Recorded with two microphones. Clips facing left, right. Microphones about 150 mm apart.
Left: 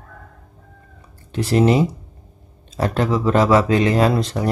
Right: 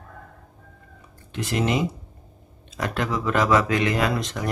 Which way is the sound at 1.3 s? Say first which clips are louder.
Left 8 dB; 35° left (ahead or behind).